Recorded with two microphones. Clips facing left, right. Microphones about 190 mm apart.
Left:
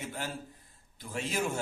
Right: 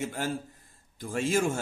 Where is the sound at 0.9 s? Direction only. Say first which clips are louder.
Right 7 dB; 50° right (ahead or behind).